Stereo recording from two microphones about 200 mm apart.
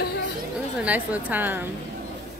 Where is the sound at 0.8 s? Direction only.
10° right (ahead or behind).